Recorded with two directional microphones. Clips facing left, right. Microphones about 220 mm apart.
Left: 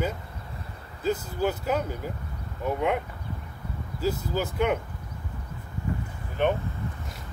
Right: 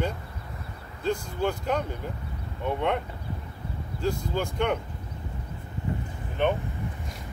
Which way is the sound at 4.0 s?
5° left (ahead or behind).